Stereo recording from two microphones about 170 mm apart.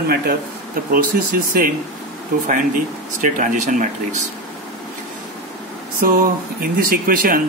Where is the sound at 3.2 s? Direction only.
50° right (ahead or behind).